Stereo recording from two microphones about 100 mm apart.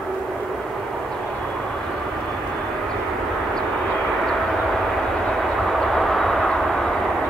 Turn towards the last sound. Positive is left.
turn(degrees=0)  # may be behind; listen again after turning